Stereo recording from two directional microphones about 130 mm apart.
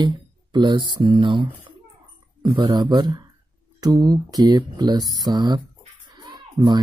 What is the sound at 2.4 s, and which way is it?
A child's voice, 40° right (ahead or behind).